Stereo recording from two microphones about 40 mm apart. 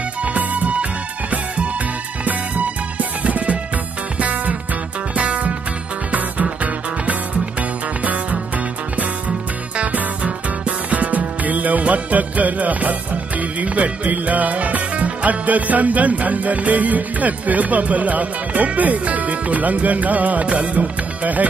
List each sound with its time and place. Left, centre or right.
0.2 s music: right
2.2 s music: right
9.9 s music: right